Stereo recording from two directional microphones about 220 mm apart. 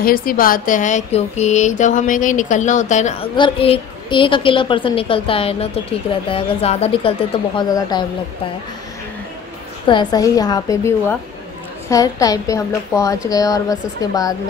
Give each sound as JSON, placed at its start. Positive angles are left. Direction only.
{"t": 0.0, "sound": "speech", "side_deg": 40}
{"t": 9.8, "sound": "a woman's voice", "side_deg": 20}